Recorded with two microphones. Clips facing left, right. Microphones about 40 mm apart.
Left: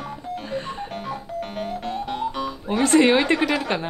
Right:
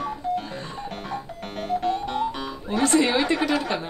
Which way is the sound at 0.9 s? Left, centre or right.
Centre.